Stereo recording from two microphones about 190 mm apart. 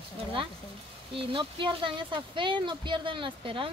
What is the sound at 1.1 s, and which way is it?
Speech, 25° right (ahead or behind).